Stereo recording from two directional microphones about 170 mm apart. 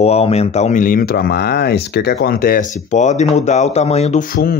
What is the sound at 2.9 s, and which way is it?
Speech, 45° left (ahead or behind).